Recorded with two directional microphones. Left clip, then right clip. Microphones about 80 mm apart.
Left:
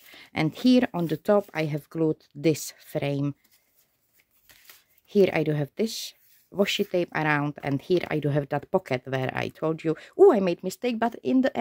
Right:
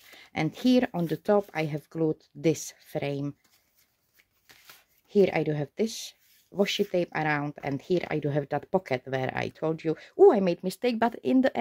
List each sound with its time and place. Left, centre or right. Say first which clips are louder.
0.1 s speech: left 3 dB; left
5.0 s speech: left 2 dB; left; by 11.5 s centre